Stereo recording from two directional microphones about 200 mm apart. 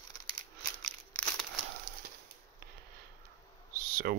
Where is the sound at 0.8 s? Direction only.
5° left (ahead or behind).